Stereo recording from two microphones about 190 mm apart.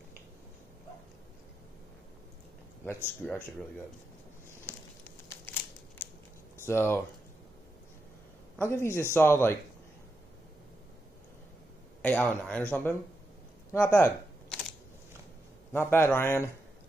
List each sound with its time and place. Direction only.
2.8 s speech: 10° left (ahead or behind)
4.6 s crumpling: 10° left (ahead or behind)
6.6 s speech: 15° left (ahead or behind)
8.5 s speech: 10° left (ahead or behind)
12.0 s speech: 10° left (ahead or behind)
13.7 s a sound: 10° left (ahead or behind)
15.7 s speech: 10° left (ahead or behind)